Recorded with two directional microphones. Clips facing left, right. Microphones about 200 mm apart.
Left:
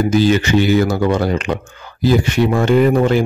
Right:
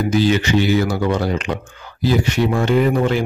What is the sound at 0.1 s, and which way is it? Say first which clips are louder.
Speech: even; 45° left (ahead or behind).